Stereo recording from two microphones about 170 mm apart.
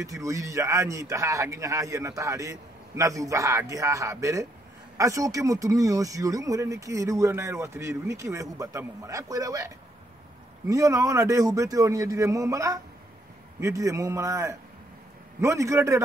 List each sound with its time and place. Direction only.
0.0 s speech: 20° right (ahead or behind)
10.7 s a man's voice: 20° right (ahead or behind)